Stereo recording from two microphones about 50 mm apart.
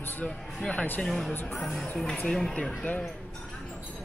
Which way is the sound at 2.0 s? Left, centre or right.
Centre.